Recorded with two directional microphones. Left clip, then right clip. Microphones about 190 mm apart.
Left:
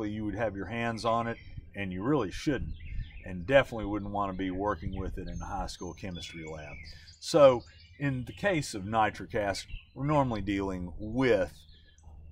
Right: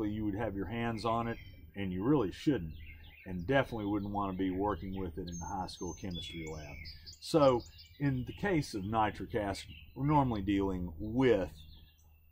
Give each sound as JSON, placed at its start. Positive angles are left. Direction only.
{"t": 0.0, "sound": "speech", "side_deg": 25}